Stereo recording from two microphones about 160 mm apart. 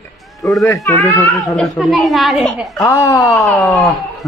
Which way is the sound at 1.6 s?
Centre (ahead or behind).